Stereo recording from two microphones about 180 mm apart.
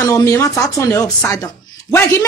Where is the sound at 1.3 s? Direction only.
20° left (ahead or behind).